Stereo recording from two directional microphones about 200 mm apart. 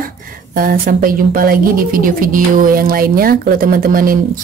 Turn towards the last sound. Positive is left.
turn(degrees=-45)  # may be behind; listen again after turning